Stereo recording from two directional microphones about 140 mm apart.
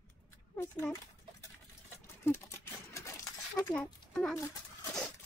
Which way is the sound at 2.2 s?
20° left (ahead or behind).